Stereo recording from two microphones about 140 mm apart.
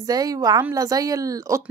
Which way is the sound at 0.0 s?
25° right (ahead or behind).